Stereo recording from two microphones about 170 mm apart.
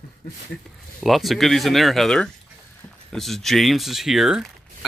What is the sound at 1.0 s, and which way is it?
Speech, centre (ahead or behind).